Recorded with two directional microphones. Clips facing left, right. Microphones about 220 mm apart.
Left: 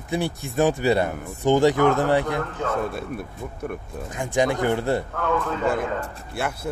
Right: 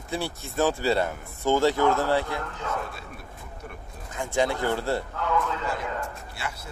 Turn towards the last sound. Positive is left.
turn(degrees=55)  # may be behind; listen again after turning